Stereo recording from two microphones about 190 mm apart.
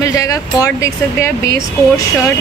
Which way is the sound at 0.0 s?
15° left (ahead or behind).